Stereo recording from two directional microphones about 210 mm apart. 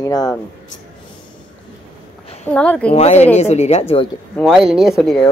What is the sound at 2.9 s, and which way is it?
A woman's voice, 30° left (ahead or behind).